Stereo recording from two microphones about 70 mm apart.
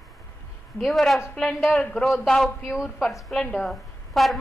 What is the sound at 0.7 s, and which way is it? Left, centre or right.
A woman's voice, centre.